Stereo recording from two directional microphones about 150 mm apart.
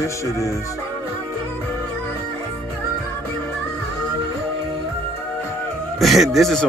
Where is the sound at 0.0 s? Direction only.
20° left (ahead or behind).